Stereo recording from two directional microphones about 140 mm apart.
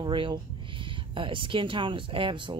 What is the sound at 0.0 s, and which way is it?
Speech, 35° right (ahead or behind).